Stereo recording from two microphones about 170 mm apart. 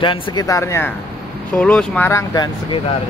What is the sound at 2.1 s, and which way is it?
Speech, 15° left (ahead or behind).